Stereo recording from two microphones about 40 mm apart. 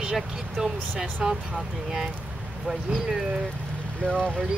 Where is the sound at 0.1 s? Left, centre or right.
Centre.